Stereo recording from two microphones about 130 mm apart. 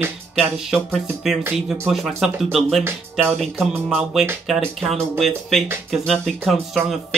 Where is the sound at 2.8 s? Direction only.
15° right (ahead or behind).